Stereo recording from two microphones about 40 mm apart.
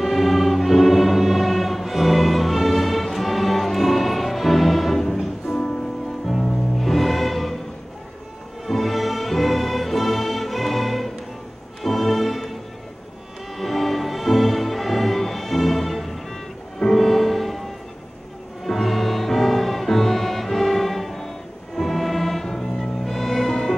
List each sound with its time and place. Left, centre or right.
0.0 s choir: centre
2.7 s music: centre
5.5 s music: left
6.2 s music: centre
8.6 s music: centre
13.6 s music: centre